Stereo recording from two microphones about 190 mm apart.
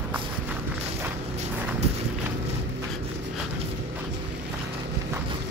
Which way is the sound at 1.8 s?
35° right (ahead or behind).